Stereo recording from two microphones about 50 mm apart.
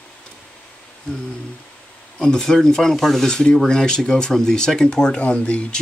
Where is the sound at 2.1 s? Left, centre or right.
Centre.